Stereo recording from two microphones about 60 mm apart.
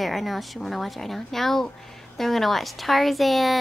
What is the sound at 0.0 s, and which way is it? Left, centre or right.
A woman's voice, centre.